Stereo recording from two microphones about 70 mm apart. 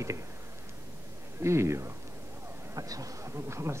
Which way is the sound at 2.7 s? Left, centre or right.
Right.